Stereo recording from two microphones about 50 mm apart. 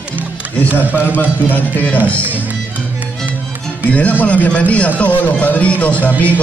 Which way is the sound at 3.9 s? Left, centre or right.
Left.